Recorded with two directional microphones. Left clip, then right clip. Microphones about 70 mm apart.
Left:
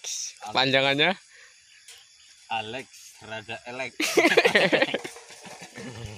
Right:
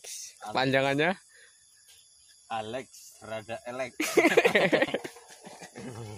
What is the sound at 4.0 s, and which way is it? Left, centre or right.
Speech, right.